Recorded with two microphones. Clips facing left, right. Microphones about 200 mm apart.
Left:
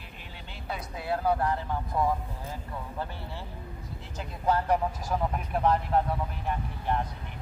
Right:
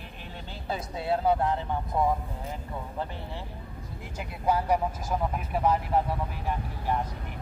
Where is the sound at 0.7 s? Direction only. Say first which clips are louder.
Right 3 dB; 25° right (ahead or behind).